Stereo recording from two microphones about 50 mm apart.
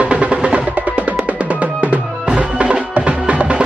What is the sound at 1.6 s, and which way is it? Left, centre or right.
Drum, right.